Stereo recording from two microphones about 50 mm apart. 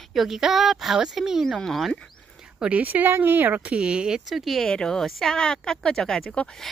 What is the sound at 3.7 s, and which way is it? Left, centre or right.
Speech, centre.